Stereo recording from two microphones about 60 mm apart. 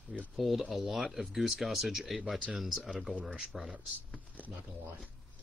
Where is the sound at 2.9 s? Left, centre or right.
Centre.